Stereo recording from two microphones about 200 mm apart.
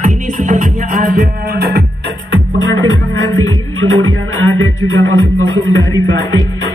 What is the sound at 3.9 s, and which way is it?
Music, 75° right (ahead or behind).